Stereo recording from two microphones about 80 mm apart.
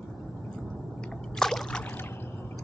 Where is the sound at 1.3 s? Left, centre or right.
Centre.